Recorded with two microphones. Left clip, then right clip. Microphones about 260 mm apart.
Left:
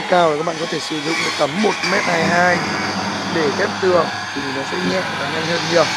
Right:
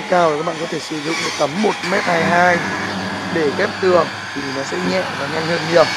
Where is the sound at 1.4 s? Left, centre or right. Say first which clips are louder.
Right 1 dB; centre.